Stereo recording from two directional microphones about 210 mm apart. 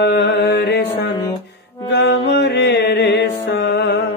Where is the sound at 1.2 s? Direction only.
20° left (ahead or behind).